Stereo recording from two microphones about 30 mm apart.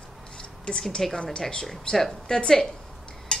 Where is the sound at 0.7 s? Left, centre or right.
Left.